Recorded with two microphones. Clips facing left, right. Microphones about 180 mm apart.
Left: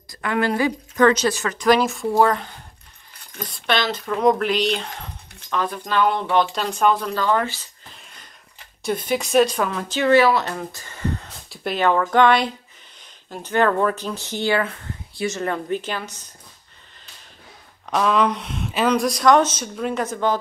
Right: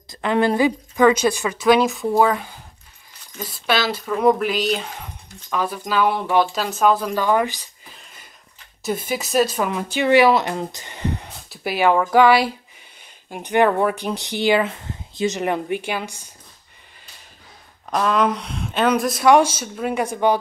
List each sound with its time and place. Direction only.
0.1 s speech: 25° right (ahead or behind)
7.9 s a sound: 5° right (ahead or behind)
8.8 s speech: 5° right (ahead or behind)
11.4 s speech: 5° right (ahead or behind)
17.8 s speech: centre (ahead or behind)